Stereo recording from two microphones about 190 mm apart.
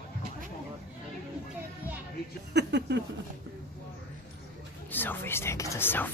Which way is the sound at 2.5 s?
65° right (ahead or behind).